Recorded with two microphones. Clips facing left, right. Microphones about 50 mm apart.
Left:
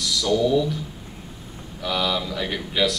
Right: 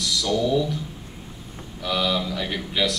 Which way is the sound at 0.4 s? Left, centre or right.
Centre.